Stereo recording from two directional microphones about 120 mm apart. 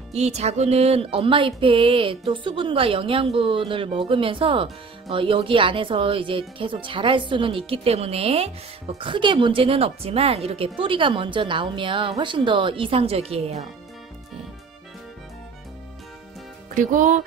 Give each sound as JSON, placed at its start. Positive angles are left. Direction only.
{"t": 0.1, "sound": "music", "side_deg": -65}
{"t": 1.6, "sound": "a woman's voice", "side_deg": -45}
{"t": 9.0, "sound": "a woman's voice", "side_deg": -40}
{"t": 16.7, "sound": "speech", "side_deg": -90}